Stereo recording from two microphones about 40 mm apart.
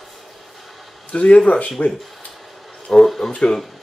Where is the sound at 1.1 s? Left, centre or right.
Left.